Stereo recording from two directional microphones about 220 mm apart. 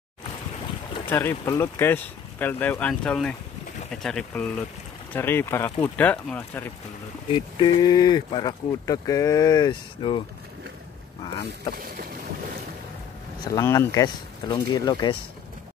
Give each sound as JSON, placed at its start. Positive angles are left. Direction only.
{"t": 1.0, "sound": "speech", "side_deg": 10}
{"t": 7.2, "sound": "speech", "side_deg": 20}
{"t": 11.7, "sound": "boat", "side_deg": -40}
{"t": 13.5, "sound": "speech", "side_deg": 15}